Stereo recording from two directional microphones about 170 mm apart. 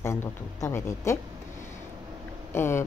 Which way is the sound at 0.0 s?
15° left (ahead or behind).